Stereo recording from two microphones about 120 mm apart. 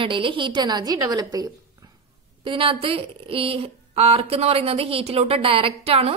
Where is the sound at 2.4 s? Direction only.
45° right (ahead or behind).